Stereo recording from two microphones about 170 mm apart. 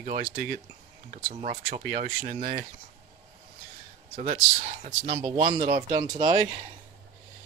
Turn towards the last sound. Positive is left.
turn(degrees=-25)  # may be behind; listen again after turning